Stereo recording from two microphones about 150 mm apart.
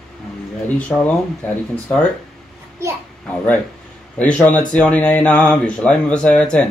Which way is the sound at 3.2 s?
10° left (ahead or behind).